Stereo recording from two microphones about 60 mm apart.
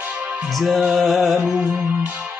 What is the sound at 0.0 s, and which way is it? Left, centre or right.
Music, right.